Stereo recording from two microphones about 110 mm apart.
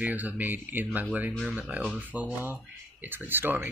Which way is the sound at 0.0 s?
15° right (ahead or behind).